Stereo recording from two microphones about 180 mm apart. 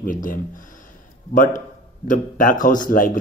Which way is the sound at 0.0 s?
50° left (ahead or behind).